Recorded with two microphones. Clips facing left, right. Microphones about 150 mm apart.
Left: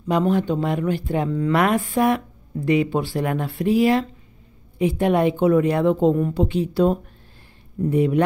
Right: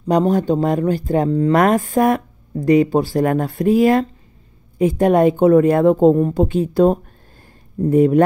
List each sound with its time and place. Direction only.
0.1 s a woman's voice: 40° right (ahead or behind)